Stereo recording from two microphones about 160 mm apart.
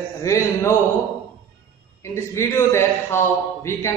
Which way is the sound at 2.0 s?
15° left (ahead or behind).